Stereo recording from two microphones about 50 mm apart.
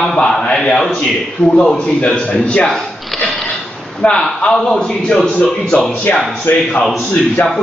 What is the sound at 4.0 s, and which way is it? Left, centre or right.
A man's voice, left.